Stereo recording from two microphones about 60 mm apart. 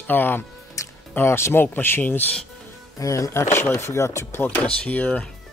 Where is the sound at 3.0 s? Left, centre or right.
Left.